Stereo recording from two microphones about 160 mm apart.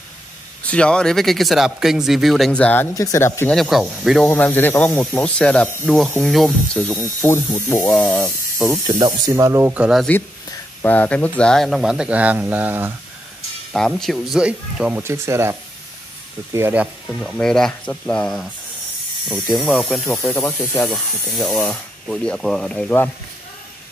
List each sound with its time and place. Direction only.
0.7 s speech: 5° left (ahead or behind)
2.9 s speech: 20° left (ahead or behind)
3.5 s speech: centre (ahead or behind)
4.3 s speech: 15° left (ahead or behind)
7.9 s speech: 5° left (ahead or behind)
8.7 s speech: 20° right (ahead or behind)
10.8 s speech: 10° left (ahead or behind); by 12.9 s 10° right (ahead or behind)
13.7 s speech: centre (ahead or behind); by 15.5 s 15° right (ahead or behind)
16.5 s speech: 10° right (ahead or behind)
20.2 s speech: 15° left (ahead or behind)
20.9 s speech: centre (ahead or behind)